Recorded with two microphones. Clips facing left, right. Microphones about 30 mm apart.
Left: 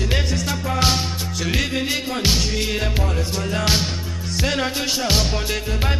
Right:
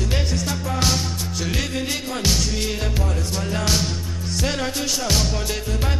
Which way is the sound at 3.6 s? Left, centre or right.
Left.